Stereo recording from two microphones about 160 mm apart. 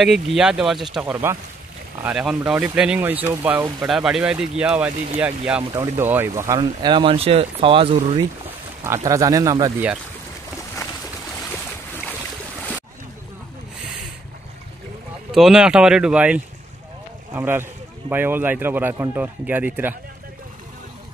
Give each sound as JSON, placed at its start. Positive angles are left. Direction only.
{"t": 0.0, "sound": "speech", "side_deg": 0}
{"t": 5.7, "sound": "speech", "side_deg": -15}
{"t": 8.5, "sound": "speech", "side_deg": -15}
{"t": 15.3, "sound": "speech", "side_deg": -5}